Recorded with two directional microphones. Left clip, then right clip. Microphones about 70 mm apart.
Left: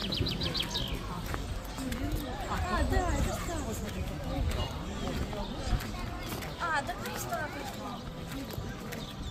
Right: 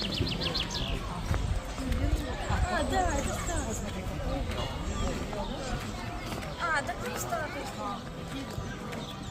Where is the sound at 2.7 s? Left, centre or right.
Left.